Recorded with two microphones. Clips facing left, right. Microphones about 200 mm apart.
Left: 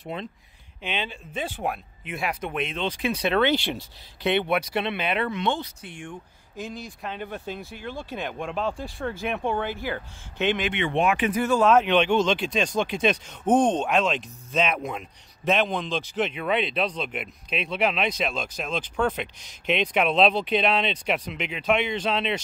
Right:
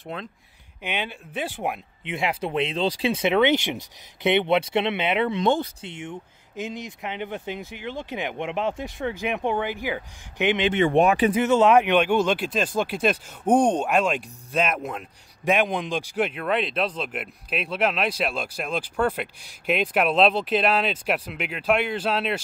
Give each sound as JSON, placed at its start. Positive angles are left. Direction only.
{"t": 0.8, "sound": "speech", "side_deg": -10}
{"t": 2.1, "sound": "speech", "side_deg": -25}
{"t": 5.4, "sound": "speech", "side_deg": -40}
{"t": 5.8, "sound": "speech", "side_deg": -20}
{"t": 10.7, "sound": "speech", "side_deg": -45}
{"t": 11.3, "sound": "speech", "side_deg": -20}
{"t": 15.4, "sound": "speech", "side_deg": -10}